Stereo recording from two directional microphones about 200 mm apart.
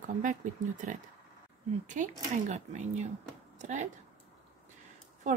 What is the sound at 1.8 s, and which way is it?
Speech, 40° right (ahead or behind).